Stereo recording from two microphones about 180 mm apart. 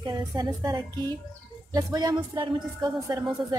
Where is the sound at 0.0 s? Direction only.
20° right (ahead or behind).